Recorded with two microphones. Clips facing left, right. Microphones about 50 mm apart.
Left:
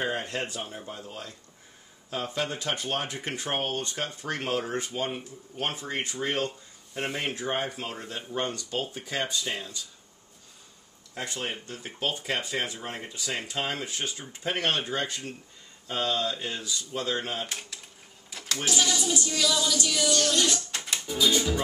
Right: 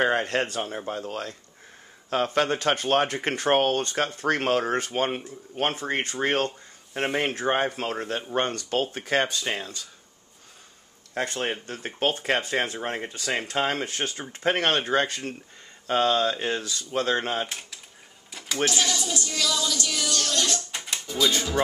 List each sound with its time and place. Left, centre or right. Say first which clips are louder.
0.0 s speech: right 7 dB; right
11.1 s speech: right 6 dB; right
17.5 s speech: even; centre
18.3 s a sound: right 1 dB; centre
18.7 s speech: even; centre
20.7 s pigeon: right 1 dB; centre